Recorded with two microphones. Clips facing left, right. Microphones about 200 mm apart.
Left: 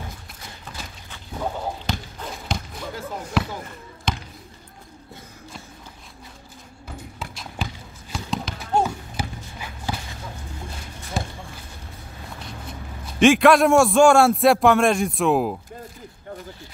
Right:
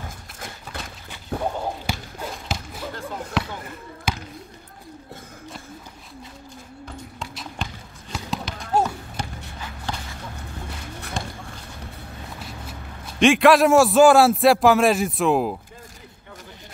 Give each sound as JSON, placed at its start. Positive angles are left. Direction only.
{"t": 0.7, "sound": "a sound", "side_deg": -60}
{"t": 1.9, "sound": "basketball bounce", "side_deg": -10}
{"t": 7.2, "sound": "clip-clop", "side_deg": 0}
{"t": 8.1, "sound": "horse", "side_deg": 0}
{"t": 11.2, "sound": "a sound", "side_deg": 5}
{"t": 13.2, "sound": "a man's voice", "side_deg": 0}